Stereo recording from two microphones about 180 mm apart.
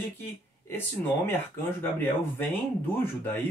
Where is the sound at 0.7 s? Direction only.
10° left (ahead or behind).